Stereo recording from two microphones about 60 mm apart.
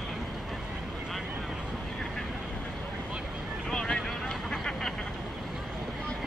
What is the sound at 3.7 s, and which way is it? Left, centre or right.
Boat, centre.